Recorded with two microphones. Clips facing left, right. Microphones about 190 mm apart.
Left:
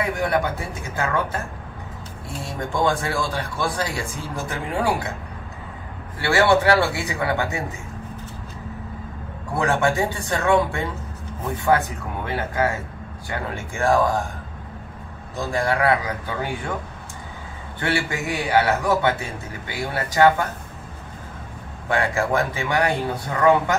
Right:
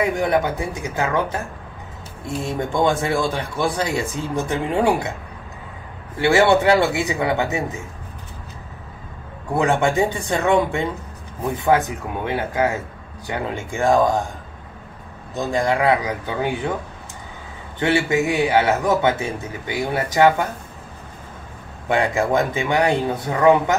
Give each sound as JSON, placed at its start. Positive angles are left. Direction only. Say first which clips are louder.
{"t": 0.2, "sound": "a man's voice", "louder": "right 3 dB", "side_deg": -20}
{"t": 2.7, "sound": "a man's voice", "louder": "right 2 dB", "side_deg": -20}
{"t": 6.2, "sound": "a man's voice", "louder": "right 3 dB", "side_deg": -20}
{"t": 9.6, "sound": "a man's voice", "louder": "right 3 dB", "side_deg": -20}
{"t": 12.3, "sound": "a man's voice", "louder": "right 2 dB", "side_deg": -15}
{"t": 15.3, "sound": "a man's voice", "louder": "right 3 dB", "side_deg": -20}
{"t": 17.7, "sound": "a man's voice", "louder": "right 6 dB", "side_deg": -20}
{"t": 21.8, "sound": "a man's voice", "louder": "right 3 dB", "side_deg": -20}